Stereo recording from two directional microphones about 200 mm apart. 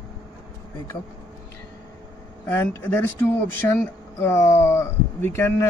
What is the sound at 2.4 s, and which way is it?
Speech, 10° left (ahead or behind).